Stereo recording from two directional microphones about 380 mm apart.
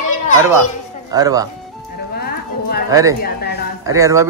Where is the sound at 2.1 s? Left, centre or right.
Left.